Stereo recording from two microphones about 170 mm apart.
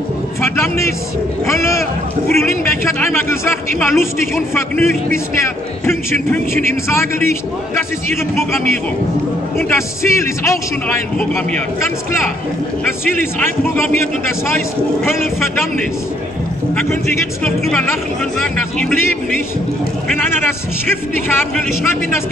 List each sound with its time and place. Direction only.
0.4 s a sound: 15° left (ahead or behind)
1.4 s a man's voice: 15° left (ahead or behind)
9.6 s a man's voice: 15° left (ahead or behind)
13.2 s a man's voice: 10° left (ahead or behind)
17.4 s speech: 5° left (ahead or behind)
20.4 s a man's voice: 15° left (ahead or behind)